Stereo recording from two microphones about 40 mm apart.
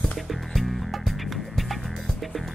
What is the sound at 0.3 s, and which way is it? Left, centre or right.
Music, centre.